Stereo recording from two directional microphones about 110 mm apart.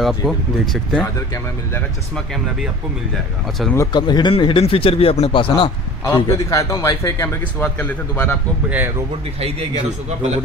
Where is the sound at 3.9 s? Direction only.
40° left (ahead or behind).